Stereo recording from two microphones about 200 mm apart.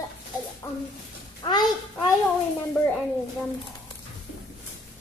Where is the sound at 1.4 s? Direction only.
20° left (ahead or behind).